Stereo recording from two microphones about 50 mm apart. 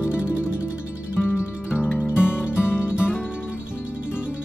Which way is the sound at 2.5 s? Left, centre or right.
Left.